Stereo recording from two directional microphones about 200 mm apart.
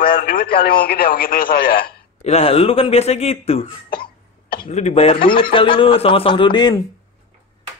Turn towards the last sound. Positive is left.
turn(degrees=20)  # may be behind; listen again after turning